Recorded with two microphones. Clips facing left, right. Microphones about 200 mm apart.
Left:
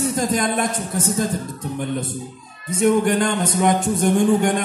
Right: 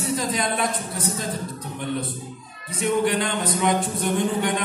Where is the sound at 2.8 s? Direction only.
45° left (ahead or behind).